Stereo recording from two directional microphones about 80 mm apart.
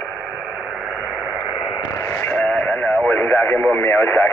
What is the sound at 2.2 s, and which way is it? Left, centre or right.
Radio, left.